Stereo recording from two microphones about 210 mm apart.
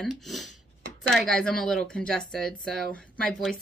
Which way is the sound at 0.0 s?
Centre (ahead or behind).